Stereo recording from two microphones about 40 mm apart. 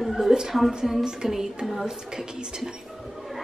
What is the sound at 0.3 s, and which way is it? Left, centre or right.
A woman's voice, centre.